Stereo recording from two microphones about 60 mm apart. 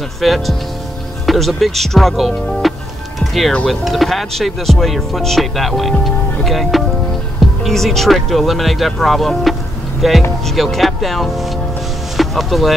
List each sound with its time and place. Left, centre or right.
0.2 s speech: centre